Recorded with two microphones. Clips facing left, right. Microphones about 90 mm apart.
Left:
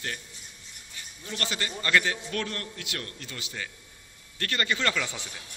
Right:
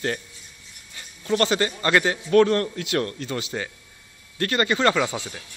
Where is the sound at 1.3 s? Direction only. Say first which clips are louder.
Right 13 dB; 55° right (ahead or behind).